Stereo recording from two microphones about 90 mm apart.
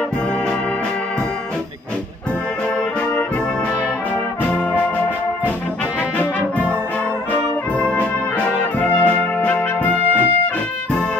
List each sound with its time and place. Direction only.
4.5 s brass instrument: 15° left (ahead or behind)
7.8 s brass instrument: 15° left (ahead or behind)
8.7 s music: 15° left (ahead or behind)